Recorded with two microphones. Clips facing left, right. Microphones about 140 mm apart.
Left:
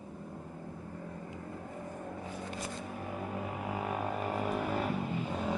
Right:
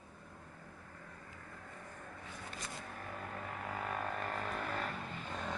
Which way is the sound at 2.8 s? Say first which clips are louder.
Left 7 dB; 15° left (ahead or behind).